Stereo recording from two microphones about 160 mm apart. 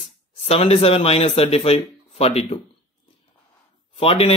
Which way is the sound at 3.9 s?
35° left (ahead or behind).